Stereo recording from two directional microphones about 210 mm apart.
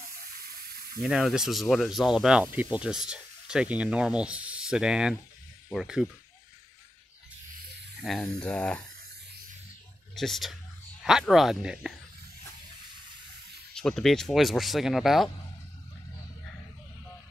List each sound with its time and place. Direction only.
0.6 s a sound: 45° right (ahead or behind)
1.0 s speech: centre (ahead or behind)
8.0 s speech: centre (ahead or behind)
10.1 s speech: centre (ahead or behind)
13.7 s speech: centre (ahead or behind)